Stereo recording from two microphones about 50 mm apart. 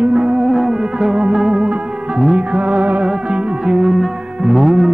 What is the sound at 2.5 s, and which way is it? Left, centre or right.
Music, right.